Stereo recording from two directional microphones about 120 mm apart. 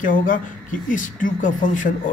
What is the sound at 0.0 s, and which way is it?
Speech, 90° left.